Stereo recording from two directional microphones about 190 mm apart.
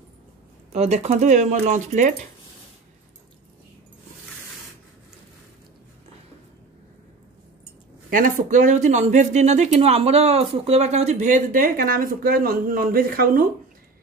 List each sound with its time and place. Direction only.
0.7 s speech: 35° right (ahead or behind)
8.1 s speech: 45° right (ahead or behind)